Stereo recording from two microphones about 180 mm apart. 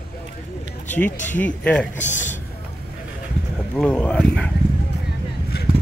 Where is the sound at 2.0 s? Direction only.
40° left (ahead or behind).